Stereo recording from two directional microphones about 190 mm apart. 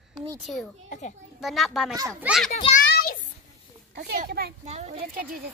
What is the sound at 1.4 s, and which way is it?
Speech, centre (ahead or behind).